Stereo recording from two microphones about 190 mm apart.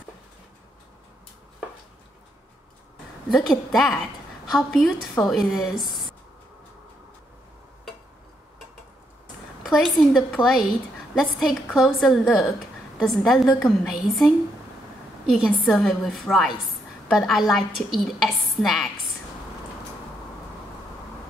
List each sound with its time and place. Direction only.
3.3 s a woman's voice: centre (ahead or behind)
9.7 s a woman's voice: centre (ahead or behind)
15.4 s a woman's voice: centre (ahead or behind)